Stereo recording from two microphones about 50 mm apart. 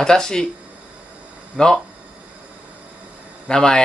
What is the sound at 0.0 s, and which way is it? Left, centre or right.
Speech, centre.